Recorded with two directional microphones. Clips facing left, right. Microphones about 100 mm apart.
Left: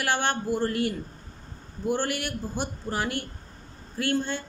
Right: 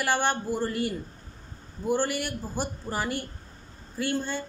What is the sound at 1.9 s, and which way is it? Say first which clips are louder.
Speech: right 3 dB; 5° right (ahead or behind).